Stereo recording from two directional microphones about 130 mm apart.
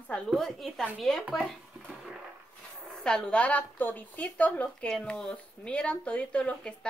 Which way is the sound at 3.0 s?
5° left (ahead or behind).